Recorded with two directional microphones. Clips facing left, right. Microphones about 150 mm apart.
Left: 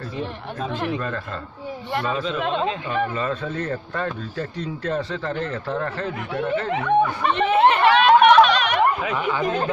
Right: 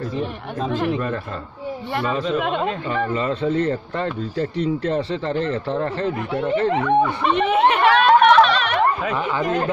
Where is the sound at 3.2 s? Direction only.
30° right (ahead or behind).